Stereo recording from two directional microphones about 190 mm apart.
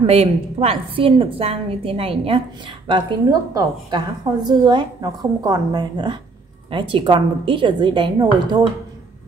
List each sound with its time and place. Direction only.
0.0 s a woman's voice: 30° right (ahead or behind)